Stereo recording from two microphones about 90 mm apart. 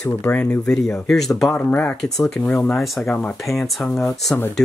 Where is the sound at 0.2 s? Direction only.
20° left (ahead or behind).